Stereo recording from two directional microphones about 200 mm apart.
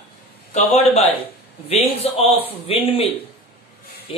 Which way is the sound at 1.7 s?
30° left (ahead or behind).